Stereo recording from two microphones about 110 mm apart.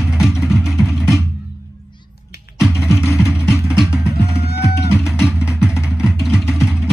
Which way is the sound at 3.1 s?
5° right (ahead or behind).